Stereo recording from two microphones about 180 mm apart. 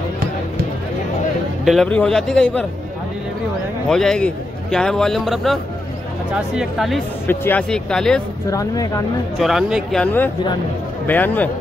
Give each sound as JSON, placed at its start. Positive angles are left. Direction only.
{"t": 1.6, "sound": "a man's voice", "side_deg": 0}
{"t": 3.9, "sound": "a man's voice", "side_deg": 5}
{"t": 7.2, "sound": "a man's voice", "side_deg": 10}
{"t": 8.5, "sound": "speech", "side_deg": 20}
{"t": 9.4, "sound": "a man's voice", "side_deg": 0}
{"t": 11.1, "sound": "a man's voice", "side_deg": 10}